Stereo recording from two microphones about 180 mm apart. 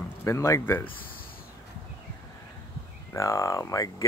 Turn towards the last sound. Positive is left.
turn(degrees=15)  # may be behind; listen again after turning